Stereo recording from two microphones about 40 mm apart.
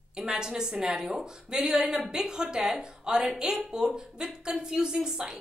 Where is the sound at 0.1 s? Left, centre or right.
Centre.